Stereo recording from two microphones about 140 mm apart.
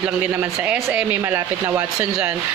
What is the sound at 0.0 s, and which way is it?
A woman's voice, 10° right (ahead or behind).